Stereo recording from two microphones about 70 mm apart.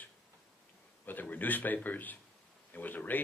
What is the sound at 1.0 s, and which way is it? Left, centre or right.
A man's voice, left.